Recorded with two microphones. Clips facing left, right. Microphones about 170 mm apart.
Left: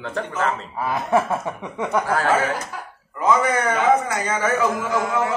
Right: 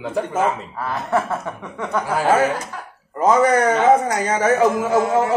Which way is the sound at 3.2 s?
40° right (ahead or behind).